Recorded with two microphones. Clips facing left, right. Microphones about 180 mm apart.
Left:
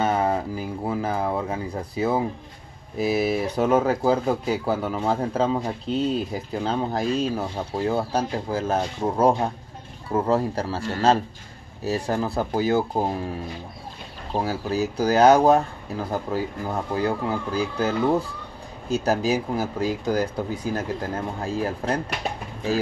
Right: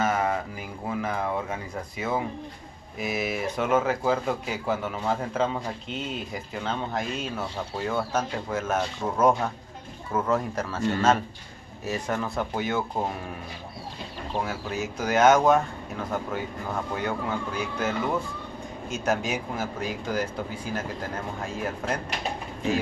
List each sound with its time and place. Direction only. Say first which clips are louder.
0.0 s speech: left 3 dB; 30° left (ahead or behind)
14.3 s speech: left 6 dB; 35° left (ahead or behind)
21.5 s speech: left 5 dB; 35° left (ahead or behind)